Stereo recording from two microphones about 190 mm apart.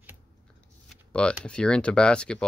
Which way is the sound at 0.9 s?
5° left (ahead or behind).